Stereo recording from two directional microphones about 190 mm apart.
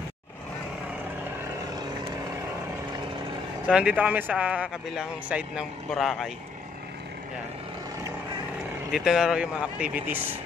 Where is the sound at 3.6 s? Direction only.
5° right (ahead or behind).